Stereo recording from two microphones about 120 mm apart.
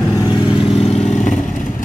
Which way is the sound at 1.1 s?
90° left.